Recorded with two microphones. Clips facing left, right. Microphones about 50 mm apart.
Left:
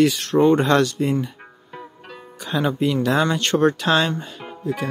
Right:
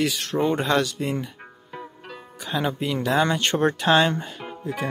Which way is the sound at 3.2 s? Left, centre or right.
Centre.